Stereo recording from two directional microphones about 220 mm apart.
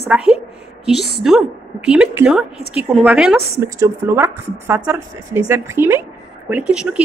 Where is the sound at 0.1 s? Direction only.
5° right (ahead or behind).